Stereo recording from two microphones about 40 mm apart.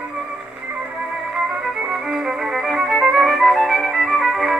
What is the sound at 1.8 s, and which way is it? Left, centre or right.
Violin, centre.